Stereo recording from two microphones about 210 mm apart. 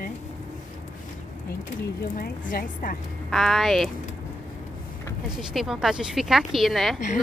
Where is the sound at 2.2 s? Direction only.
40° left (ahead or behind).